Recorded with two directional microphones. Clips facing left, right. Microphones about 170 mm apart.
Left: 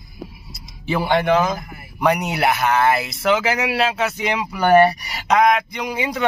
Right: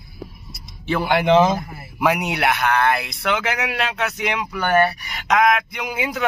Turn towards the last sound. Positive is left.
turn(degrees=0)  # may be behind; listen again after turning